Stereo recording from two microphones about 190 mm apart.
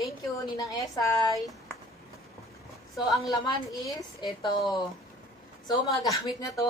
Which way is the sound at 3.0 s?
20° left (ahead or behind).